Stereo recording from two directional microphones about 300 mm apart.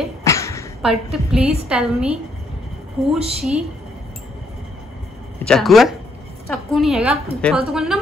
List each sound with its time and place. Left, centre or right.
0.2 s a sound: centre
0.8 s a woman's voice: centre
1.4 s a woman's voice: centre
1.7 s a woman's voice: centre
3.2 s a woman's voice: centre
5.4 s a woman's voice: centre